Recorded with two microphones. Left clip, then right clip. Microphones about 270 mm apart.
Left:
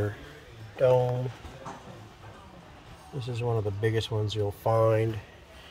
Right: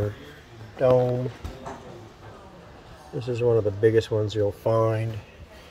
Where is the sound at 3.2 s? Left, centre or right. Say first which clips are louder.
Right 9 dB; left.